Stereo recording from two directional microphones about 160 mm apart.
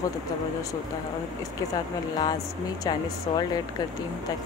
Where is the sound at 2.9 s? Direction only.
25° left (ahead or behind).